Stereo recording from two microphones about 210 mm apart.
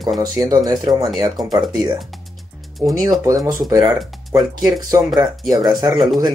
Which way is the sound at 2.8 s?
10° right (ahead or behind).